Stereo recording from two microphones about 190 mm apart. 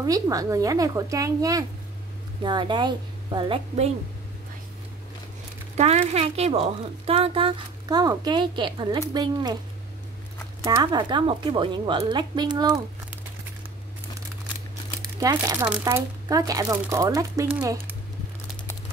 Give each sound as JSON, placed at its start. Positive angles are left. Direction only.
{"t": 0.0, "sound": "speech", "side_deg": -20}
{"t": 5.8, "sound": "speech", "side_deg": -35}
{"t": 10.6, "sound": "speech", "side_deg": -20}
{"t": 15.0, "sound": "speech", "side_deg": -20}